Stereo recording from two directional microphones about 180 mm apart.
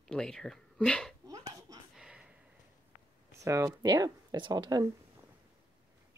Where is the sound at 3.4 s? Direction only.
15° right (ahead or behind).